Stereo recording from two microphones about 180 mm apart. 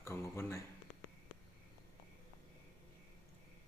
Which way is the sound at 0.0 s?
15° left (ahead or behind).